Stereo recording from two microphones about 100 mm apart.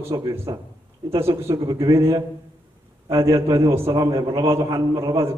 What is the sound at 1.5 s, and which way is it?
A man's voice, 35° right (ahead or behind).